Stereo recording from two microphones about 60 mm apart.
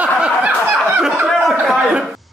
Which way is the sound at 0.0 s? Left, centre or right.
Right.